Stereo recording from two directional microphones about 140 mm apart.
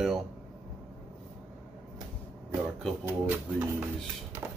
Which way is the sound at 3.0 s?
15° right (ahead or behind).